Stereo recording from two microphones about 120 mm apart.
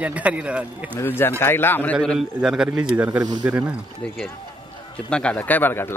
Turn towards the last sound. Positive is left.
turn(degrees=15)  # may be behind; listen again after turning